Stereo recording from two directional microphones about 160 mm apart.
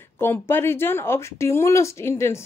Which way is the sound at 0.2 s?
15° left (ahead or behind).